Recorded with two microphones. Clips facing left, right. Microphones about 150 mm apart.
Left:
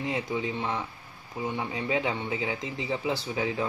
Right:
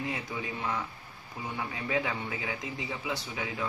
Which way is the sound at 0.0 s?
25° left (ahead or behind).